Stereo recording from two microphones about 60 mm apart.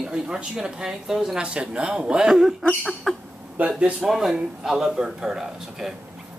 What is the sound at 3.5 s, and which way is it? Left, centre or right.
Speech, right.